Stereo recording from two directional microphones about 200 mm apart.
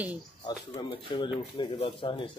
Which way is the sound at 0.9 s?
25° left (ahead or behind).